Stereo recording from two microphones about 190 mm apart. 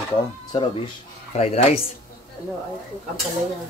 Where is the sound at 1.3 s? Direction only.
35° left (ahead or behind).